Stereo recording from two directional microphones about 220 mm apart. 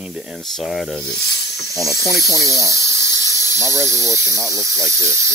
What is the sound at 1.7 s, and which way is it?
Speech, 15° left (ahead or behind).